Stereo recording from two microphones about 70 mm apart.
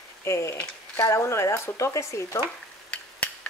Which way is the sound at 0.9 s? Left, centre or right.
Left.